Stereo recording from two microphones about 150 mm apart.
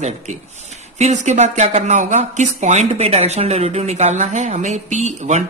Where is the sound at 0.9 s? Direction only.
50° right (ahead or behind).